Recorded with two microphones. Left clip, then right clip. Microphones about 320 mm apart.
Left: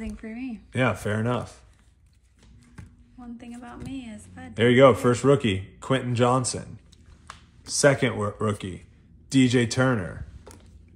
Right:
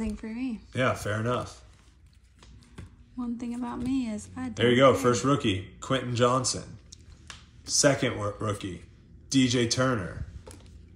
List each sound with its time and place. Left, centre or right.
0.0 s speech: centre
0.7 s a man's voice: centre
3.3 s a woman's voice: centre
4.7 s a man's voice: centre
7.6 s a man's voice: left